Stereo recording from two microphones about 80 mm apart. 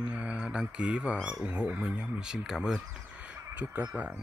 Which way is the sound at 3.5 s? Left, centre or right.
Centre.